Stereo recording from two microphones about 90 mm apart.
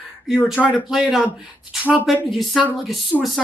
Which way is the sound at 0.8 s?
5° right (ahead or behind).